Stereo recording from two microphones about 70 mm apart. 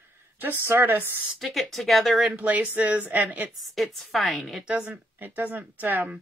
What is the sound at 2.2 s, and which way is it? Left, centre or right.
Speech, right.